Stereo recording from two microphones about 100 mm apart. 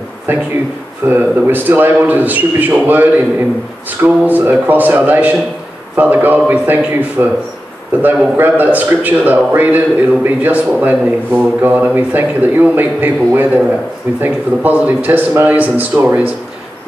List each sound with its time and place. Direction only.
0.3 s a man's voice: 20° right (ahead or behind)